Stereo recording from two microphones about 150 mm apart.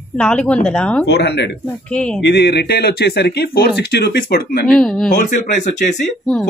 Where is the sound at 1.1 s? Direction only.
90° left.